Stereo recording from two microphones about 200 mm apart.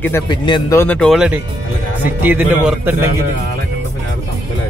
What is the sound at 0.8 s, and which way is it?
Speech, 5° left (ahead or behind).